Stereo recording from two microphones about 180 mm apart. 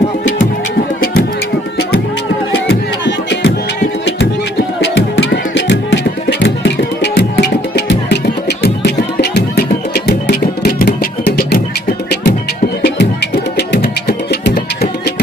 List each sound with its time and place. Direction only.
3.1 s music: 75° left (ahead or behind)
4.7 s music: 80° left; by 11.6 s 60° left (ahead or behind)
12.8 s music: 70° left (ahead or behind)